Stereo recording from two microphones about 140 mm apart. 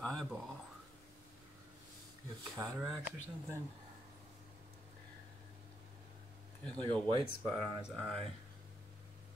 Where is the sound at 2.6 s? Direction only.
20° right (ahead or behind).